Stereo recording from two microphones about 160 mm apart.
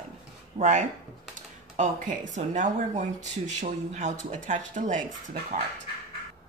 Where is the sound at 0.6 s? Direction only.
50° right (ahead or behind).